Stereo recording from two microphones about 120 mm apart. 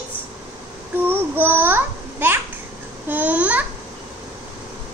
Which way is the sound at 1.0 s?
15° right (ahead or behind).